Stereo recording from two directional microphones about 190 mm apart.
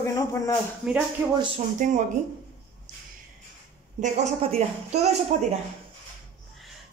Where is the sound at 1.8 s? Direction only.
40° right (ahead or behind).